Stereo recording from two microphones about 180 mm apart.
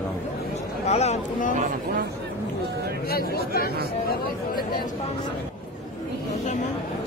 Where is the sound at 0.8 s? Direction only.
40° left (ahead or behind).